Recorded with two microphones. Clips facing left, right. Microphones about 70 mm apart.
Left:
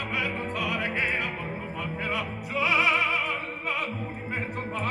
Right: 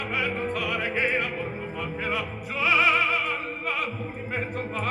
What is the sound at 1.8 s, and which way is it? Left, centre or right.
Opera, right.